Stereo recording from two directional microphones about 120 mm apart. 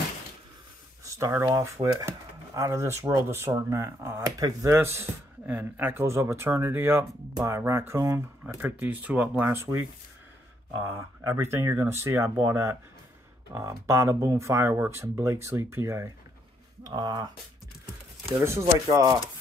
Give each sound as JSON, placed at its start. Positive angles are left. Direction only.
{"t": 1.0, "sound": "speech", "side_deg": -25}
{"t": 8.5, "sound": "speech", "side_deg": -15}
{"t": 11.2, "sound": "speech", "side_deg": -20}
{"t": 16.8, "sound": "speech", "side_deg": -35}
{"t": 18.9, "sound": "speech", "side_deg": -25}